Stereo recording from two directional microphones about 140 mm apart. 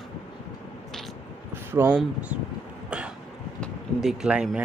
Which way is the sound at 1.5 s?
15° right (ahead or behind).